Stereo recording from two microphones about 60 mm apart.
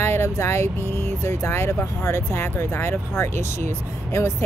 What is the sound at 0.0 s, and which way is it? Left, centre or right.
Speech, left.